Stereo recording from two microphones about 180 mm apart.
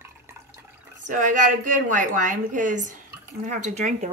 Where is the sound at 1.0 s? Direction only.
45° right (ahead or behind).